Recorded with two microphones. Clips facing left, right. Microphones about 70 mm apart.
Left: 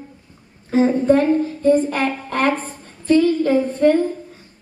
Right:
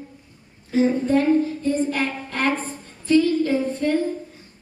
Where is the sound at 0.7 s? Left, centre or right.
Left.